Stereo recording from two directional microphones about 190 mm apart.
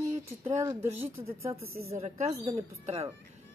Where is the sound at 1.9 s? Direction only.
35° right (ahead or behind).